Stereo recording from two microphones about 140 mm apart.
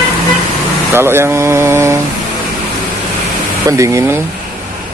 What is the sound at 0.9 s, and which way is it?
Speech, 15° right (ahead or behind).